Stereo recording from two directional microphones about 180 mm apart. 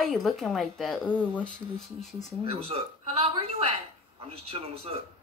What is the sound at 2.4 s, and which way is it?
A woman's voice, 30° right (ahead or behind).